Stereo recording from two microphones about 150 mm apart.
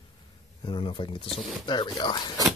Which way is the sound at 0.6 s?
35° left (ahead or behind).